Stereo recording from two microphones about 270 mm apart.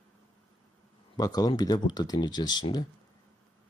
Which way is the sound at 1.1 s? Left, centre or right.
Centre.